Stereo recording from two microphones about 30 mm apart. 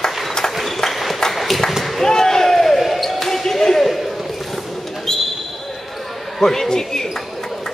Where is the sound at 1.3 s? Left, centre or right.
Centre.